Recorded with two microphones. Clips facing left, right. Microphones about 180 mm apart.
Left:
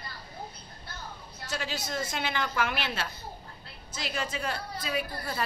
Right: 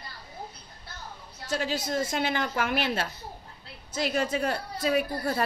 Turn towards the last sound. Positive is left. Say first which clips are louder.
# right 6 dB
turn(degrees=-45)  # may be behind; listen again after turning